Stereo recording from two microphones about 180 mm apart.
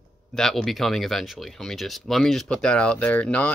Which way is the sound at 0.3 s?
5° left (ahead or behind).